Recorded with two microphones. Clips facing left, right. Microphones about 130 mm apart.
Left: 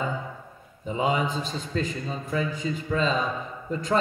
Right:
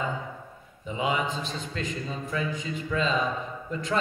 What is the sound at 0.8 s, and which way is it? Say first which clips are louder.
Mantra: left 3 dB; 40° left (ahead or behind).